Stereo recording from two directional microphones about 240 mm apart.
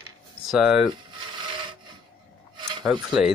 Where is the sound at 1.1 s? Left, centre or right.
Centre.